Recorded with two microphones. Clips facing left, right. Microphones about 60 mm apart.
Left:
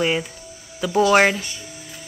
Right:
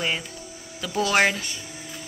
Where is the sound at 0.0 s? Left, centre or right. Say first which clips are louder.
Left 6 dB; centre.